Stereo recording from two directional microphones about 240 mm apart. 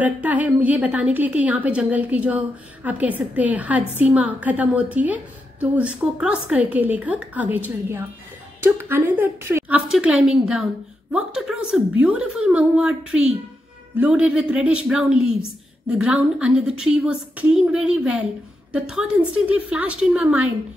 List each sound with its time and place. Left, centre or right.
0.0 s a woman's voice: centre